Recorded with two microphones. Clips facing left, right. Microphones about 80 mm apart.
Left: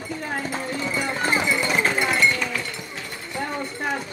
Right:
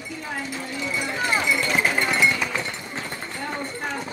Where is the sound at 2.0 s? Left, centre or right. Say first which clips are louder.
Left 1 dB; centre.